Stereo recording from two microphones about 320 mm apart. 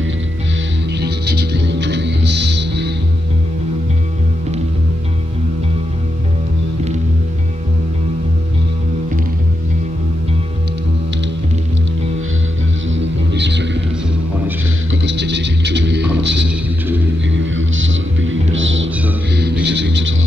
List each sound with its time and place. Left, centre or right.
0.9 s music: right
12.9 s music: right
14.9 s music: right